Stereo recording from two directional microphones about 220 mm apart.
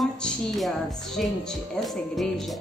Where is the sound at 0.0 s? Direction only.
Centre (ahead or behind).